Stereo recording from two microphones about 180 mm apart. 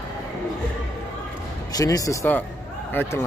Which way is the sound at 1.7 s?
20° left (ahead or behind).